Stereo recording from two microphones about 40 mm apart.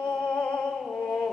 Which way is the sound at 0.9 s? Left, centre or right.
Centre.